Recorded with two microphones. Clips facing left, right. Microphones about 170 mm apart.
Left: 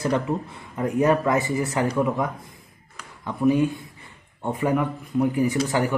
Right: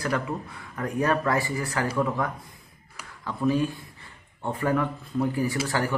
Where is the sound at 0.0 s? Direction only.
25° left (ahead or behind).